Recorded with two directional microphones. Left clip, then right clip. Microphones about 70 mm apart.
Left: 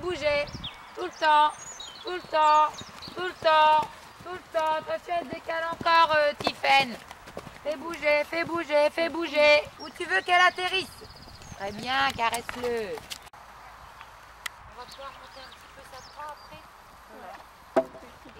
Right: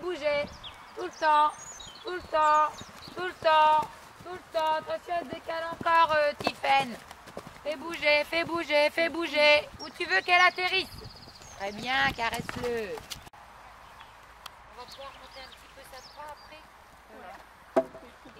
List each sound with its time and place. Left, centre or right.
0.0 s a sound: left
0.5 s horse: centre
0.9 s speech: left
3.8 s speech: centre
5.7 s a sound: left
6.9 s speech: centre
8.5 s speech: right
10.0 s speech: right
12.2 s speech: right
12.4 s speech: centre
17.8 s chop: centre